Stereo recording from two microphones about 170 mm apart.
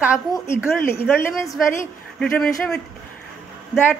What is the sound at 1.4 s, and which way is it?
Speech, centre (ahead or behind).